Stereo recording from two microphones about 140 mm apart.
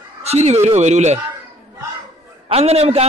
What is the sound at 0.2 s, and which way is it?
Speech, 50° right (ahead or behind).